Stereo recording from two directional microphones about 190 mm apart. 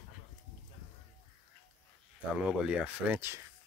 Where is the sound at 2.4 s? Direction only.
5° right (ahead or behind).